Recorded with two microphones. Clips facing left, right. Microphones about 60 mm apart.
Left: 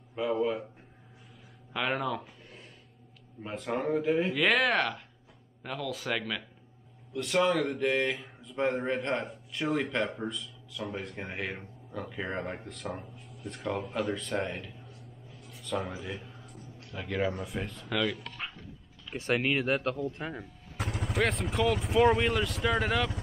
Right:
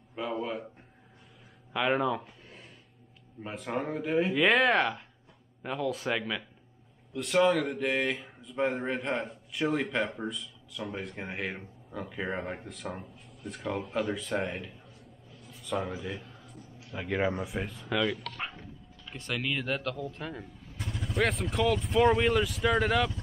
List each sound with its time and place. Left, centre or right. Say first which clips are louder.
0.1 s speech: left 4 dB; centre
1.7 s speech: right 3 dB; centre
3.4 s speech: left 2 dB; centre
15.4 s a sound: right 1 dB; centre
15.9 s a man's voice: right 2 dB; centre
16.9 s speech: right 2 dB; centre
19.1 s speech: left 5 dB; left
20.0 s a man's voice: left 2 dB; centre
20.7 s vehicle: left 2 dB; left
21.2 s speech: right 1 dB; centre